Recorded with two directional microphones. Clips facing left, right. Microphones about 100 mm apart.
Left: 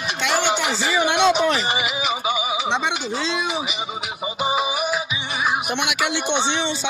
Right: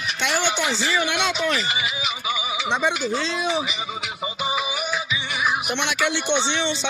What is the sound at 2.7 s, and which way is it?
Speech, 30° left (ahead or behind).